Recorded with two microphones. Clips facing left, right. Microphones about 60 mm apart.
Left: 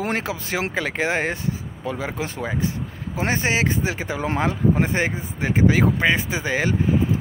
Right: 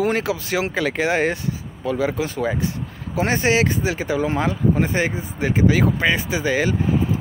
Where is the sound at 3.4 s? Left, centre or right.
Left.